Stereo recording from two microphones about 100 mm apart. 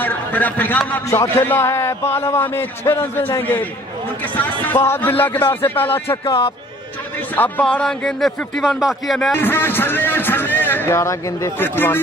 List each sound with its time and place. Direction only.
0.0 s a man's voice: 15° left (ahead or behind)
7.3 s a man's voice: 15° left (ahead or behind); by 9.3 s centre (ahead or behind)
9.3 s a man's voice: 20° left (ahead or behind)